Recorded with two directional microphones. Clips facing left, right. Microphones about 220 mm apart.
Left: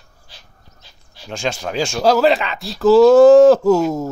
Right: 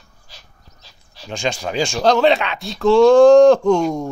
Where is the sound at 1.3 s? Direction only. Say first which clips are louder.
Even; 5° left (ahead or behind).